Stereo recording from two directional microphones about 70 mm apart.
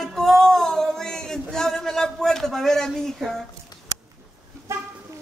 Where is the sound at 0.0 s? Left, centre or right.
Centre.